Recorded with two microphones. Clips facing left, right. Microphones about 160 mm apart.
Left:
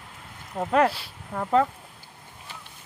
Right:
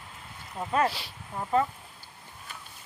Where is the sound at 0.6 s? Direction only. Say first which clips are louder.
Left 5 dB; 65° left (ahead or behind).